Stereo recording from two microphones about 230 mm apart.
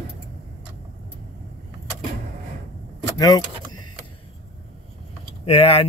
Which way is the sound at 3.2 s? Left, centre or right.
Centre.